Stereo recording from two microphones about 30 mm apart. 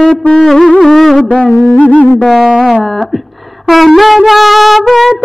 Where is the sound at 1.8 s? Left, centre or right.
Left.